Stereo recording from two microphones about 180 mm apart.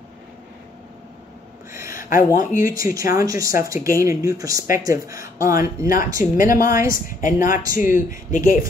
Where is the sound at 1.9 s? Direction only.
50° left (ahead or behind).